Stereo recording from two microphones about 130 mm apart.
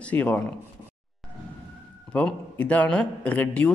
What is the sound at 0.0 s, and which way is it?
Speech, 10° left (ahead or behind).